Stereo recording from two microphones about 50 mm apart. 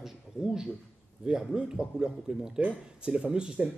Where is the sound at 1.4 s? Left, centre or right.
Centre.